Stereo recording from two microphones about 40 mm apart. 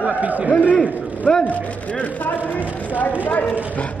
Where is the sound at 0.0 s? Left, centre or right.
Right.